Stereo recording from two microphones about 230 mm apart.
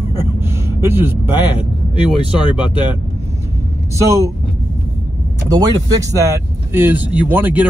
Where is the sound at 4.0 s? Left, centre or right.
Centre.